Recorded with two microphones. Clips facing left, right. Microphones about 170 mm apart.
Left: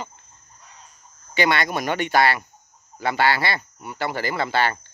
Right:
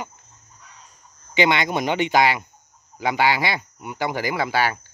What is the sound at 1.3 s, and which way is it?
Speech, 20° right (ahead or behind).